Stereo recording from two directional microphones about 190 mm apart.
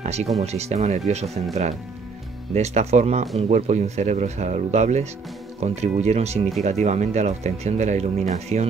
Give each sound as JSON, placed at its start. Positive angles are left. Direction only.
{"t": 0.0, "sound": "speech", "side_deg": -35}